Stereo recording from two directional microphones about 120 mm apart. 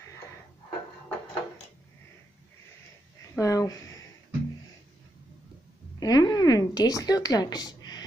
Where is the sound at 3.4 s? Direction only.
30° left (ahead or behind).